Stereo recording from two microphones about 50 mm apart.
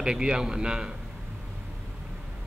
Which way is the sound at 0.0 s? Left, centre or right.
Centre.